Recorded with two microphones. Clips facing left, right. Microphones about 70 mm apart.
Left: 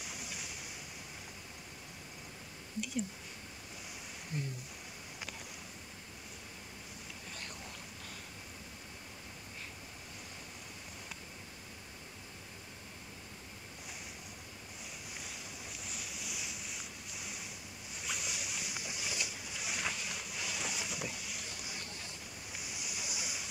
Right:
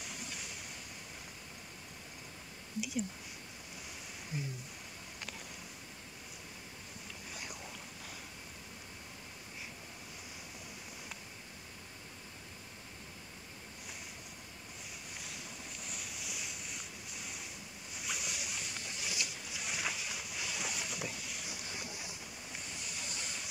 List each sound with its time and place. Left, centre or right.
0.0 s waves: centre
4.3 s speech: centre
15.2 s boat: centre
21.5 s boat: centre
22.6 s waves: centre